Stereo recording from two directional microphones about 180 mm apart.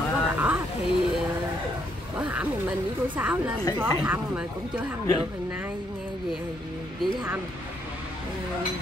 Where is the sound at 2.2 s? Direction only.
10° right (ahead or behind).